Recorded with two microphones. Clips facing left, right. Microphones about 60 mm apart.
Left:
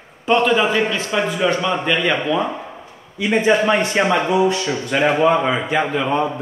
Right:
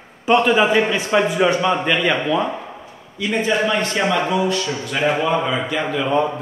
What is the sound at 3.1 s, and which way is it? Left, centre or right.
A man's voice, left.